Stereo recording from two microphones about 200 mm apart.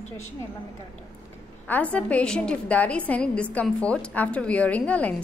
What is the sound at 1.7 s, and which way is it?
A woman's voice, 5° left (ahead or behind).